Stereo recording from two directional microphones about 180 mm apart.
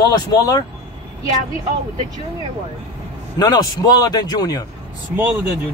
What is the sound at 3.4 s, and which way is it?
Speech, 20° left (ahead or behind).